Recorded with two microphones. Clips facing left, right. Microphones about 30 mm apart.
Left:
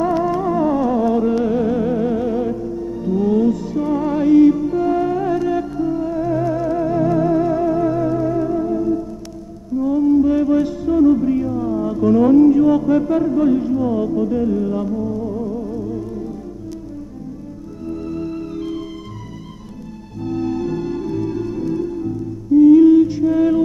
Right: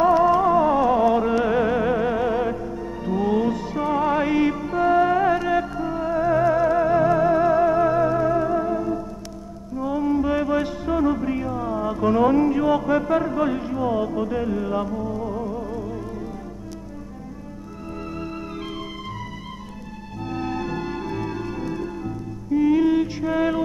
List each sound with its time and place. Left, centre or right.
0.2 s music: right
17.8 s organ: right
20.2 s music: right